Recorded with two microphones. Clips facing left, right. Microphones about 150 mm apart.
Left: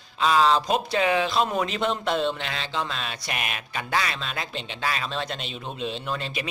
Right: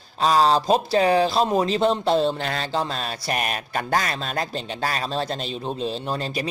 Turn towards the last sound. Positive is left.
turn(degrees=-35)  # may be behind; listen again after turning